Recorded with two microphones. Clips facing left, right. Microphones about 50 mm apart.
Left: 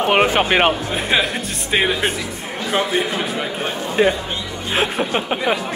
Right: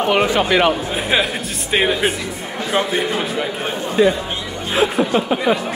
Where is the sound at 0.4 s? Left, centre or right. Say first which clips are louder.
Right 1 dB; left.